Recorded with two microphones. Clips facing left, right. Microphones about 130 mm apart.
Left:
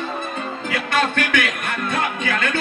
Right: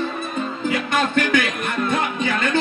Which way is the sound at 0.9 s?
20° right (ahead or behind).